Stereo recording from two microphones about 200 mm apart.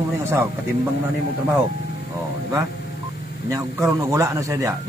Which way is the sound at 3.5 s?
15° right (ahead or behind).